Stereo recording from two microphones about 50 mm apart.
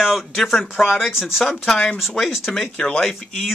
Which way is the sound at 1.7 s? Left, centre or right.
Left.